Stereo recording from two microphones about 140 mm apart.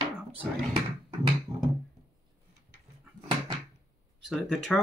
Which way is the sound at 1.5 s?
45° right (ahead or behind).